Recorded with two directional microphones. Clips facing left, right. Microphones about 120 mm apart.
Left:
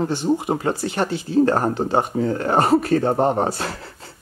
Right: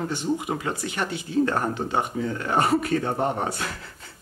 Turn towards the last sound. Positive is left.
turn(degrees=35)  # may be behind; listen again after turning